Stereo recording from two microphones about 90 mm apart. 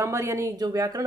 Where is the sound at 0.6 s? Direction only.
40° right (ahead or behind).